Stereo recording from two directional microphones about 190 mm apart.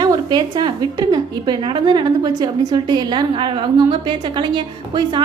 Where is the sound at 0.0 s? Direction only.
20° right (ahead or behind).